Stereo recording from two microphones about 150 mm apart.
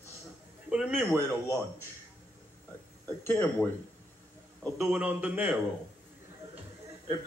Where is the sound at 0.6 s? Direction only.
5° right (ahead or behind).